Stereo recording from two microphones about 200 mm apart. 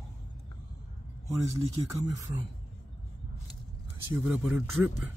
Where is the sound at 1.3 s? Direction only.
15° right (ahead or behind).